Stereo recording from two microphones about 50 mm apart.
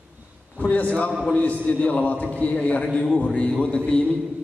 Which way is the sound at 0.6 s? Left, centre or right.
Left.